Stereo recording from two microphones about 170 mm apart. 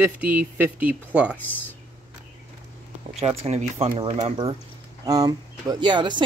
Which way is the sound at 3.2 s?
40° right (ahead or behind).